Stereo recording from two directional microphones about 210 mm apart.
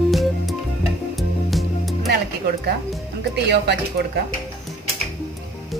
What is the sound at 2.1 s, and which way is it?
A woman's voice, 50° right (ahead or behind).